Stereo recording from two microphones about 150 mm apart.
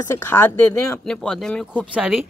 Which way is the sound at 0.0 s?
15° left (ahead or behind).